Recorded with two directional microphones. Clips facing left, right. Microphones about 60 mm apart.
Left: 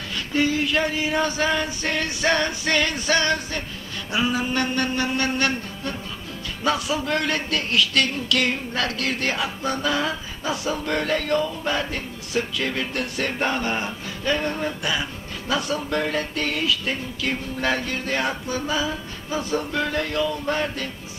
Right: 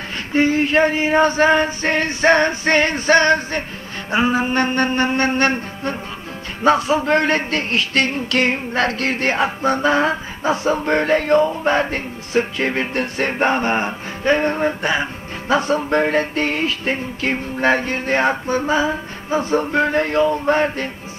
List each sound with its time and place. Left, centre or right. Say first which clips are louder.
0.3 s a man's voice: right 6 dB; right